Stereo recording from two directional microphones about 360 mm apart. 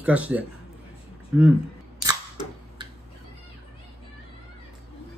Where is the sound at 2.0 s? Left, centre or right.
Centre.